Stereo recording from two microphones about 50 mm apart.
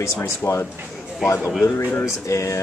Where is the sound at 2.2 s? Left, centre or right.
Left.